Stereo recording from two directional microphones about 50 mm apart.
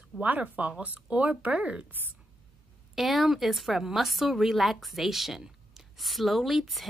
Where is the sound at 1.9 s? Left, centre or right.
Right.